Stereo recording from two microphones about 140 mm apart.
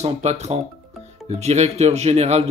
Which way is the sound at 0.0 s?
50° right (ahead or behind).